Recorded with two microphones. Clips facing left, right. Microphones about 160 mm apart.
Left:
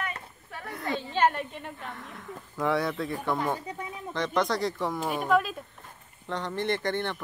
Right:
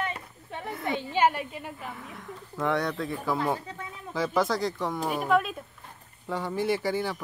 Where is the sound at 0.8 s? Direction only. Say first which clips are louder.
Right 1 dB; 10° right (ahead or behind).